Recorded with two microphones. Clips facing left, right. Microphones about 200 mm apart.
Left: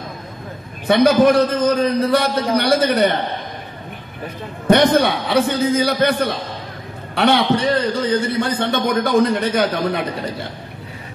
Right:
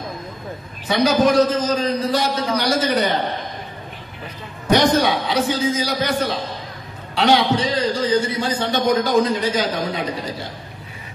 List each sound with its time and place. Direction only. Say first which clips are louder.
0.8 s a man's voice: left 4 dB; 60° left (ahead or behind)
4.6 s a man's voice: left 3 dB; 55° left (ahead or behind)